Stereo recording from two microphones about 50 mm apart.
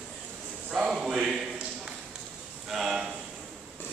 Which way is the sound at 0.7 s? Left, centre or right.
Centre.